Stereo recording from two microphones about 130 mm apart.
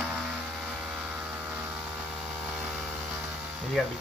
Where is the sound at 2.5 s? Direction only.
10° right (ahead or behind).